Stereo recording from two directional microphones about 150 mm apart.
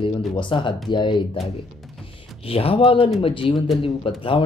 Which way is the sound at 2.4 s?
40° left (ahead or behind).